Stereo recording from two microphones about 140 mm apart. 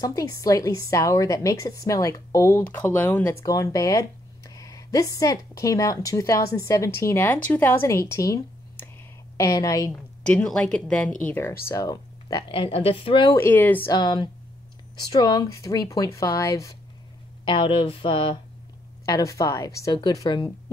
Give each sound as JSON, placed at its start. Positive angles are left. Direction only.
{"t": 0.0, "sound": "a woman's voice", "side_deg": 25}
{"t": 3.4, "sound": "a woman's voice", "side_deg": 25}
{"t": 9.4, "sound": "a woman's voice", "side_deg": 25}
{"t": 10.2, "sound": "a woman's voice", "side_deg": 10}
{"t": 11.6, "sound": "speech", "side_deg": 25}
{"t": 12.4, "sound": "a woman's voice", "side_deg": 40}
{"t": 13.2, "sound": "a woman's voice", "side_deg": 20}
{"t": 13.9, "sound": "a woman's voice", "side_deg": 30}
{"t": 17.5, "sound": "speech", "side_deg": 40}
{"t": 19.0, "sound": "a woman's voice", "side_deg": 25}